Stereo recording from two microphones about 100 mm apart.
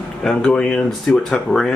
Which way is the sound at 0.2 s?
5° left (ahead or behind).